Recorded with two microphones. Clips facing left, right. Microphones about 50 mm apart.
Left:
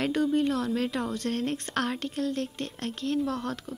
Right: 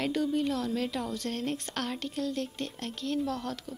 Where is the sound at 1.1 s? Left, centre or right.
Left.